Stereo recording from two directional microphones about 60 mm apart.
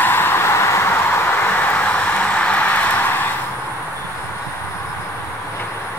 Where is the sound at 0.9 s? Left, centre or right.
Left.